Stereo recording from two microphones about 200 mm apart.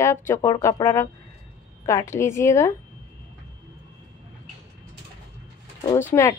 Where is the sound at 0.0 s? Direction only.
10° left (ahead or behind).